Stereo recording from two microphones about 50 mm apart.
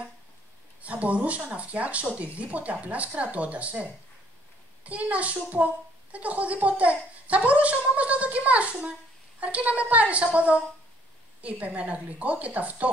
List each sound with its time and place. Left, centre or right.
0.8 s a woman's voice: right